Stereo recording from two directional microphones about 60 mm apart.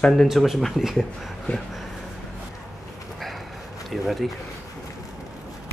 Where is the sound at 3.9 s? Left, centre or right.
Centre.